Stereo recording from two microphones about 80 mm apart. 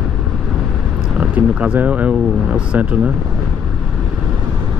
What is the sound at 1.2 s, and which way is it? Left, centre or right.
Speech, centre.